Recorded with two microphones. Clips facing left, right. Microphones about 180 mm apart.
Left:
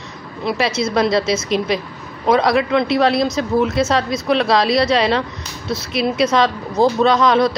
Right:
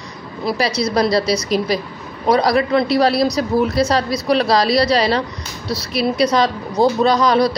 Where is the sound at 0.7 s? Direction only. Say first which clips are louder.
Even; 35° right (ahead or behind).